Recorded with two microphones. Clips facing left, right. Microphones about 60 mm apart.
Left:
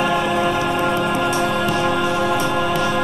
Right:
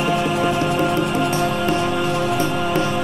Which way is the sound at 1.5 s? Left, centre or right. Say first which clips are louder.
Left 1 dB; left.